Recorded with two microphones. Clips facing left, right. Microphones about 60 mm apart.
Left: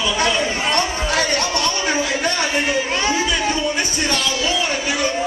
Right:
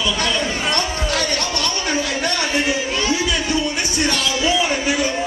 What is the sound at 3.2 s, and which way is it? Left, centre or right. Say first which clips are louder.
Music: left 1 dB; centre.